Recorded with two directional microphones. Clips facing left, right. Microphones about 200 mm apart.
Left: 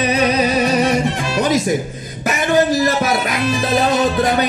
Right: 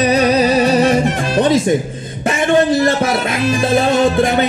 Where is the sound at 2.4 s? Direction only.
30° right (ahead or behind).